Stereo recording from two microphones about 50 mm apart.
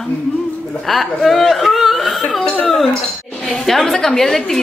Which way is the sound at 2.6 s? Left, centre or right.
Centre.